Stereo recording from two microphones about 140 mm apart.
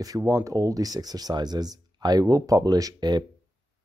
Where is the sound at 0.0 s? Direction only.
25° right (ahead or behind).